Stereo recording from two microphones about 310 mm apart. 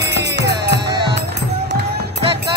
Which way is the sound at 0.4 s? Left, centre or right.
Right.